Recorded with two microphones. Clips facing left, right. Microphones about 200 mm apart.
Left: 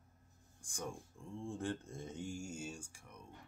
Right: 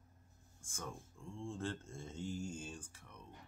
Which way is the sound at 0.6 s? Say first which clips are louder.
Left 3 dB; 15° left (ahead or behind).